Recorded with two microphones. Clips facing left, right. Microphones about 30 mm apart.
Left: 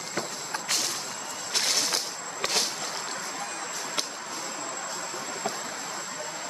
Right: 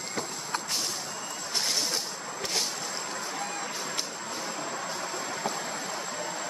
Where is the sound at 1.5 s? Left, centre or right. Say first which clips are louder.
Left 2 dB; left.